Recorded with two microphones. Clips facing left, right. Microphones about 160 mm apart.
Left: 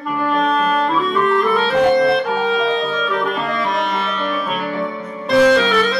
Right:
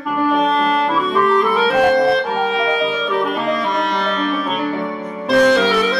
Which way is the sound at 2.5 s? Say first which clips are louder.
Even; centre (ahead or behind).